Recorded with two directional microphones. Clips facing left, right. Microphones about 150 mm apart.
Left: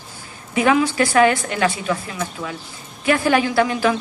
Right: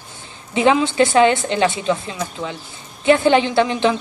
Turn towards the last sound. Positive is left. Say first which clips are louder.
# right 1 dB
turn(degrees=-25)  # may be behind; listen again after turning